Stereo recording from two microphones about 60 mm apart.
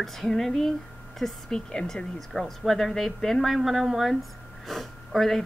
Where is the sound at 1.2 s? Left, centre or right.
Centre.